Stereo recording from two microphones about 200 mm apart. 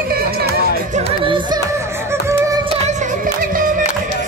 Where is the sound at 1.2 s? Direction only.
25° right (ahead or behind).